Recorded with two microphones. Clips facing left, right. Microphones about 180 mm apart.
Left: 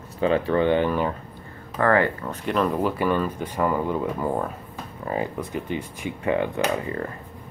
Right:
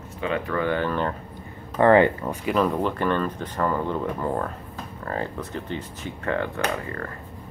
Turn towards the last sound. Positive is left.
turn(degrees=20)  # may be behind; listen again after turning